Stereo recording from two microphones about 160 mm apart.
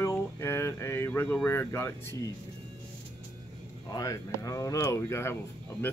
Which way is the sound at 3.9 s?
20° left (ahead or behind).